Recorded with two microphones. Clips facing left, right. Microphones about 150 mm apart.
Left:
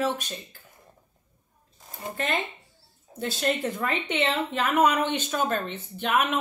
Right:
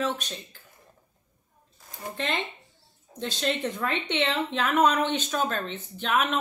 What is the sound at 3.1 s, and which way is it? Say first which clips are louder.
A woman's voice: left 2 dB; 10° left (ahead or behind).